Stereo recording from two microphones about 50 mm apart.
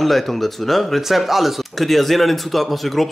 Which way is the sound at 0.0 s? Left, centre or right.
Centre.